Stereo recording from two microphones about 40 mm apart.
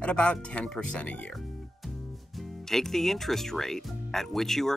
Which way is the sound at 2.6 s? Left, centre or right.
Centre.